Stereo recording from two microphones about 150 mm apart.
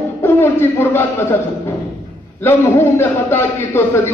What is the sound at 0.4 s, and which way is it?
Speech, 15° left (ahead or behind).